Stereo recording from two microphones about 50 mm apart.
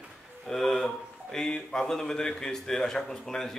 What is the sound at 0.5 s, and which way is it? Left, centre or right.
A man's voice, centre.